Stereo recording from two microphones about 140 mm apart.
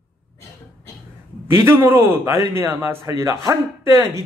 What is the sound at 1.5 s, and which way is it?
A man's voice, 15° right (ahead or behind).